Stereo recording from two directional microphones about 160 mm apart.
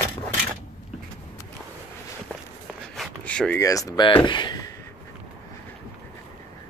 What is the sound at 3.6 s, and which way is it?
Speech, 20° left (ahead or behind).